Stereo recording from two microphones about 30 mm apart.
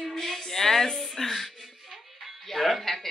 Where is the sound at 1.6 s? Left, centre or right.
Centre.